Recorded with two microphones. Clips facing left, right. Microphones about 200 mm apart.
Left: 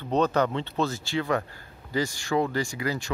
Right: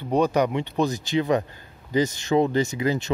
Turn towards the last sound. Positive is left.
turn(degrees=-20)  # may be behind; listen again after turning